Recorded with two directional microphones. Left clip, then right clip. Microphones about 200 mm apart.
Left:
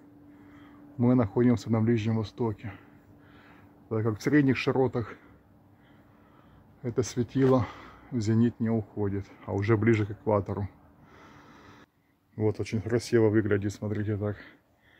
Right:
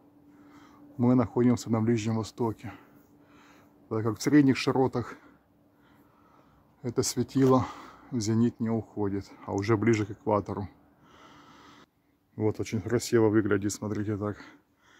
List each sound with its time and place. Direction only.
0.5 s speech: 15° right (ahead or behind)
6.8 s speech: 15° right (ahead or behind)
11.1 s snort: 10° right (ahead or behind)
12.4 s speech: 15° right (ahead or behind)